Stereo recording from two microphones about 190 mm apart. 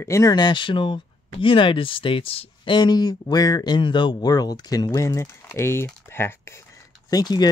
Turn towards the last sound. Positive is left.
turn(degrees=20)  # may be behind; listen again after turning